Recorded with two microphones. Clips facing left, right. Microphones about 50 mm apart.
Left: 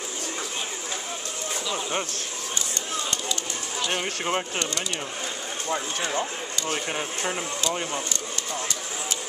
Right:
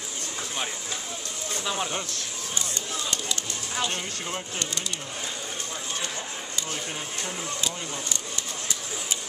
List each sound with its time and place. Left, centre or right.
3.9 s speech: left
5.7 s speech: left
6.7 s speech: left